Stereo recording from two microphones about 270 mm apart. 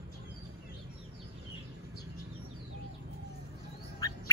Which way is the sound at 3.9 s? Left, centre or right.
Centre.